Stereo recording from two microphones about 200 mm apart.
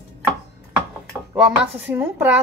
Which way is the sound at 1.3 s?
5° right (ahead or behind).